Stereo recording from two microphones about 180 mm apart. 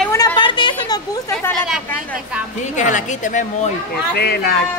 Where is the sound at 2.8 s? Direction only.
45° left (ahead or behind).